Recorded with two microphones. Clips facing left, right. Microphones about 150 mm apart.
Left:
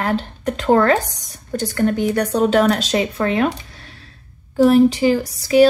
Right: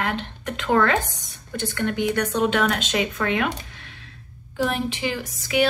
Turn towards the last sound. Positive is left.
turn(degrees=35)  # may be behind; listen again after turning